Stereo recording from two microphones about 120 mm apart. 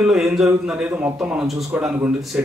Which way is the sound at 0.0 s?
5° right (ahead or behind).